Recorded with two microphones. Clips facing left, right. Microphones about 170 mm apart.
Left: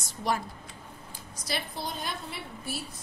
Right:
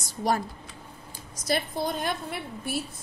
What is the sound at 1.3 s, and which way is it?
Speech, 50° right (ahead or behind).